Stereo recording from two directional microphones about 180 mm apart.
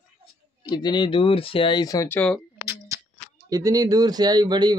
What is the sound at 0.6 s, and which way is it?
Speech, 25° left (ahead or behind).